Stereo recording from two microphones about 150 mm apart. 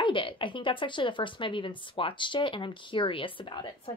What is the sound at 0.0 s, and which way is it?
A woman's voice, 35° left (ahead or behind).